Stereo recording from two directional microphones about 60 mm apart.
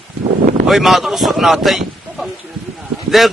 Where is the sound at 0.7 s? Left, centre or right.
Centre.